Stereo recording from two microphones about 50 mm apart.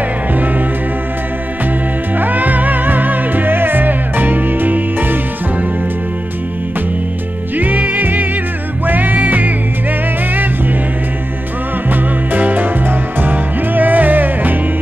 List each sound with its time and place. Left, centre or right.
0.3 s music: right
2.1 s music: right
7.5 s music: right
11.9 s music: right